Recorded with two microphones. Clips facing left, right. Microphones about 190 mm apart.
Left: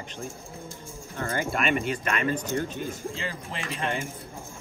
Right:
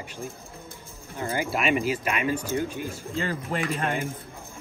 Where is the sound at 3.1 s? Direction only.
45° right (ahead or behind).